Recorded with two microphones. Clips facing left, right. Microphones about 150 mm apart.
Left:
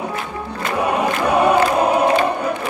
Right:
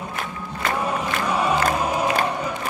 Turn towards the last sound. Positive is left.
turn(degrees=60)  # may be behind; listen again after turning